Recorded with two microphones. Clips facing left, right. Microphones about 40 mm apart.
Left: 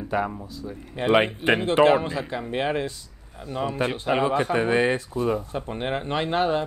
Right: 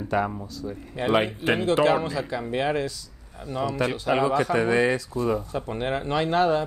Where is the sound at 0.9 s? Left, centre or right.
Left.